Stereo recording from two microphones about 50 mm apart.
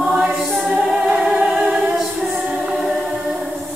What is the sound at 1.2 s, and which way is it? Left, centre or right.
Music, centre.